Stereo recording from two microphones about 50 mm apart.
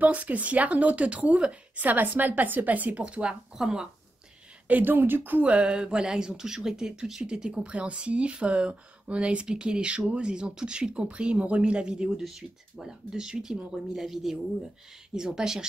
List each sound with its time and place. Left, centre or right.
0.0 s speech: right
1.9 s a woman's voice: right
3.0 s speech: right
4.6 s speech: right; by 15.6 s centre